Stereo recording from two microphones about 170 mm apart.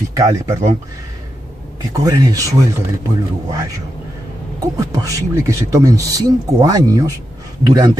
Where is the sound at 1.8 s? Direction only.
20° right (ahead or behind).